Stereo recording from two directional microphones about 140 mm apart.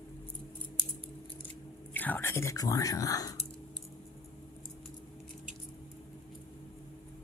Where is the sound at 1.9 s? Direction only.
15° left (ahead or behind).